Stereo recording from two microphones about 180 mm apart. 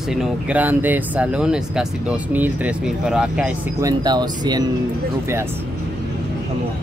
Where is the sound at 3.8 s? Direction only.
25° right (ahead or behind).